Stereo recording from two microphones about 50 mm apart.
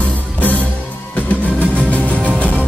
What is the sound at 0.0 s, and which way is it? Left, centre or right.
Music, left.